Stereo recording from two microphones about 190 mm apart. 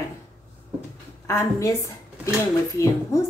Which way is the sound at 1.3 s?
15° left (ahead or behind).